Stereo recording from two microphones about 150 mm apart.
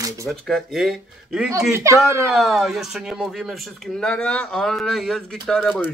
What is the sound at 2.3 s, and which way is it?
Speech, centre (ahead or behind).